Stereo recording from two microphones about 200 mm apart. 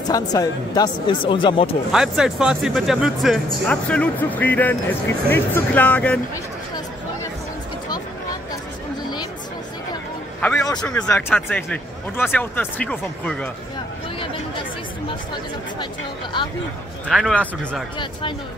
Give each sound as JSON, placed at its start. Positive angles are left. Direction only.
{"t": 0.1, "sound": "speech", "side_deg": 20}
{"t": 1.9, "sound": "speech", "side_deg": -5}
{"t": 10.8, "sound": "speech", "side_deg": 5}
{"t": 16.3, "sound": "speech", "side_deg": 25}
{"t": 17.1, "sound": "speech", "side_deg": 5}